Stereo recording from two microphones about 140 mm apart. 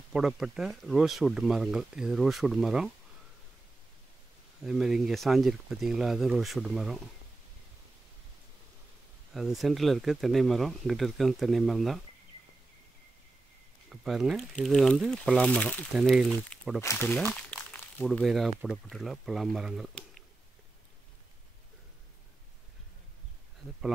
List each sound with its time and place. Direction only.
0.1 s speech: 5° right (ahead or behind)
4.6 s speech: 5° right (ahead or behind)
9.3 s speech: centre (ahead or behind)
13.8 s speech: 5° right (ahead or behind)
15.9 s speech: 5° right (ahead or behind)
16.9 s speech: 20° left (ahead or behind)
17.3 s crumpling: 10° left (ahead or behind)
18.2 s speech: centre (ahead or behind)
19.9 s a sound: 5° left (ahead or behind)